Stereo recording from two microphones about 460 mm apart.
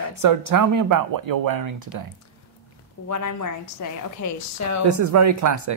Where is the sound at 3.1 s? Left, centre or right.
Left.